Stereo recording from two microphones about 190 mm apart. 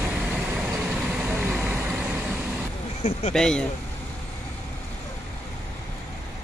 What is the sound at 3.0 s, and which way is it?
Speech, 35° left (ahead or behind).